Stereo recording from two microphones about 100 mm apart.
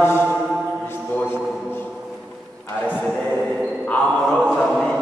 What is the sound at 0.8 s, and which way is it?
Mantra, 15° left (ahead or behind).